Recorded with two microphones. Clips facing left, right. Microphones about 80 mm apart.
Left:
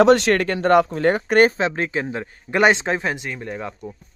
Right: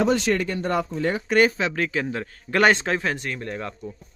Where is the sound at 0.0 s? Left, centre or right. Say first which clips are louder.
Left 7 dB; left.